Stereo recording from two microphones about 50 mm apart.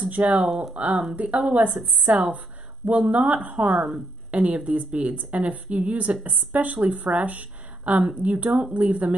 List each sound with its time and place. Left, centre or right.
0.0 s speech: right